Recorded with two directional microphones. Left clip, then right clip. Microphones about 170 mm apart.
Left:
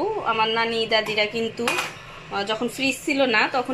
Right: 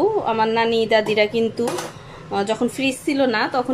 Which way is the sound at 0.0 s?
25° right (ahead or behind).